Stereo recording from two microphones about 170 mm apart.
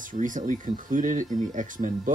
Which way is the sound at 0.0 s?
50° right (ahead or behind).